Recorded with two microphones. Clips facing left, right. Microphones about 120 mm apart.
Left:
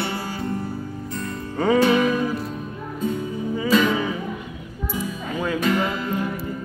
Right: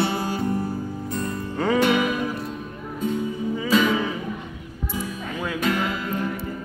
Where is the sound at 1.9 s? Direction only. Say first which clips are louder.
Left 3 dB; 5° right (ahead or behind).